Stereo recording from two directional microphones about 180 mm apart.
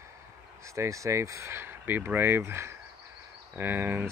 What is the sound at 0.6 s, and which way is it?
Speech, 15° right (ahead or behind).